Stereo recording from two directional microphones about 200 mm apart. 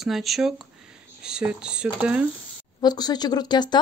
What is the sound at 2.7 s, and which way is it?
Speech, 20° left (ahead or behind).